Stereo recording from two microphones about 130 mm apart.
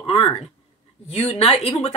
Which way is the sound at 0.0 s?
50° left (ahead or behind).